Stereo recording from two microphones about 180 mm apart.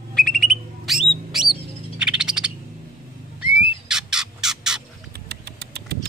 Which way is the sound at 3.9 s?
5° right (ahead or behind).